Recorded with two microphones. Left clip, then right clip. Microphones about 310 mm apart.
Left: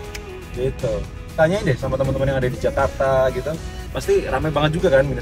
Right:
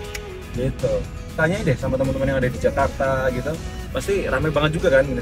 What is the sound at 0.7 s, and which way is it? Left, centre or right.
Speech, centre.